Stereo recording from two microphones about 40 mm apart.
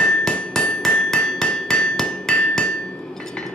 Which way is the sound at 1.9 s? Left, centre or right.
Centre.